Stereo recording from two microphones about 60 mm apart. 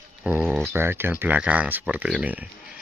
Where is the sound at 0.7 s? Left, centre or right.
Right.